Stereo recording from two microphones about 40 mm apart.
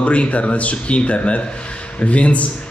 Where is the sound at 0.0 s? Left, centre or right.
Left.